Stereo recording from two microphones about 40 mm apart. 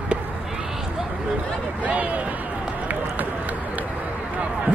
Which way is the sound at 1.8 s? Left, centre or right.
Right.